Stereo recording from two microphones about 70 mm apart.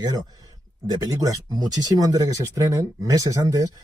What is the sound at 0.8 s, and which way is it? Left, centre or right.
Speech, right.